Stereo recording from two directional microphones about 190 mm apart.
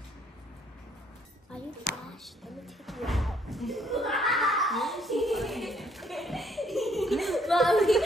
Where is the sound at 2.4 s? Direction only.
Centre (ahead or behind).